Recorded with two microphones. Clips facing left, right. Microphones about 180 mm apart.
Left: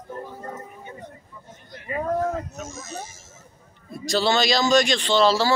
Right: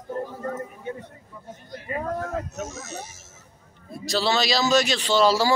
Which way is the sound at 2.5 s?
75° right (ahead or behind).